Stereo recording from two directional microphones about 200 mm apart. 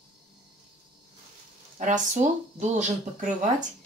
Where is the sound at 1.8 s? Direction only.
35° right (ahead or behind).